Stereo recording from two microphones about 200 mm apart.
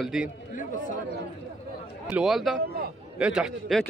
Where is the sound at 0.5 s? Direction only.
40° left (ahead or behind).